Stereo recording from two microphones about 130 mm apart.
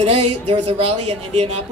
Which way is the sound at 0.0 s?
50° right (ahead or behind).